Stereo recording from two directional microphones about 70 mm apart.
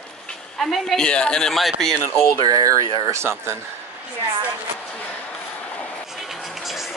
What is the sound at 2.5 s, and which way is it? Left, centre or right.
Speech, right.